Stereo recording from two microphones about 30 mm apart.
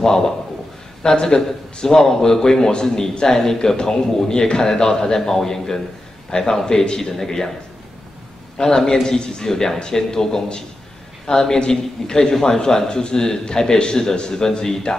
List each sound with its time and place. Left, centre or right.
0.0 s a man's voice: centre
1.3 s a man's voice: left
8.6 s a man's voice: centre